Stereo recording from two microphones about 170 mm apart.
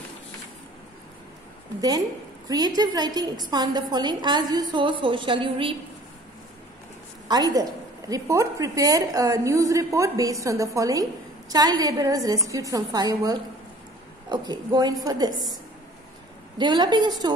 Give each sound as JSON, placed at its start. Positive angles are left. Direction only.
{"t": 1.8, "sound": "a woman's voice", "side_deg": -20}
{"t": 7.2, "sound": "a woman's voice", "side_deg": -20}
{"t": 16.5, "sound": "a woman's voice", "side_deg": -25}